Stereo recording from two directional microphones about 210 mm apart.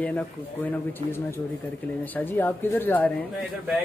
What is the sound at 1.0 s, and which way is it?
Speech, 30° right (ahead or behind).